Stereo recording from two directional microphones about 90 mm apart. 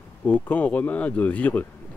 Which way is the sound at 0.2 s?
20° left (ahead or behind).